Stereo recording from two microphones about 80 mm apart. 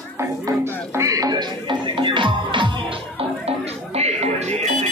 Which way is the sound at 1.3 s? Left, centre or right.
Right.